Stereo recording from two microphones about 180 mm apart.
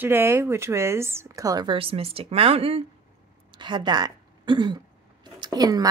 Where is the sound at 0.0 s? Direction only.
15° right (ahead or behind).